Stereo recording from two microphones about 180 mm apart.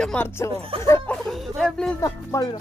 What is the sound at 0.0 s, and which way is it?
Speech, 10° left (ahead or behind).